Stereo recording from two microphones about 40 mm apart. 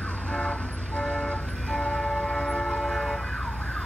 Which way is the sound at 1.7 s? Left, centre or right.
Left.